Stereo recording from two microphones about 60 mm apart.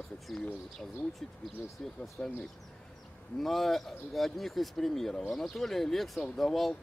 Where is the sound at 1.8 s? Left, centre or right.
Centre.